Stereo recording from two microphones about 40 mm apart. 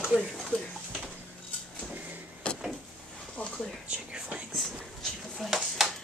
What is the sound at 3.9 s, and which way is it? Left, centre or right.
Whispering, right.